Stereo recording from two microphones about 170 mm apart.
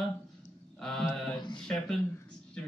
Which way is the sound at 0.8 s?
Centre (ahead or behind).